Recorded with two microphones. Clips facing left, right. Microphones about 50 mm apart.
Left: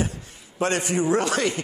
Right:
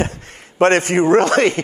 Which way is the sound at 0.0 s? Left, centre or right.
Right.